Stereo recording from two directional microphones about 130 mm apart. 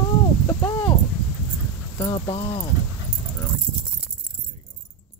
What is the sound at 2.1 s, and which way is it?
Speech, 50° left (ahead or behind).